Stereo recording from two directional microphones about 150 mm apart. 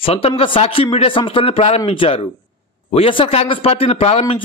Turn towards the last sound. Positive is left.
turn(degrees=40)  # may be behind; listen again after turning